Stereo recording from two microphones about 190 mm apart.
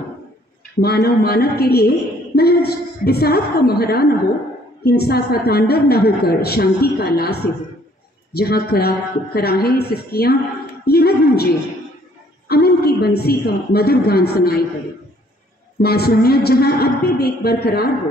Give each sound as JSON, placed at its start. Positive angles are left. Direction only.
{"t": 0.7, "sound": "a woman's voice", "side_deg": 55}
{"t": 10.9, "sound": "a sound", "side_deg": 55}
{"t": 12.4, "sound": "a woman's voice", "side_deg": 55}
{"t": 15.8, "sound": "a woman's voice", "side_deg": 55}